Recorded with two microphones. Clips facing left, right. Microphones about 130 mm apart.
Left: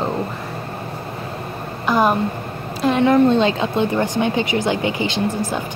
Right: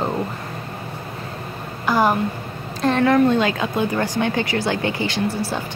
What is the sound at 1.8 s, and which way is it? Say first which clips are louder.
Speech: left 1 dB; 20° left (ahead or behind).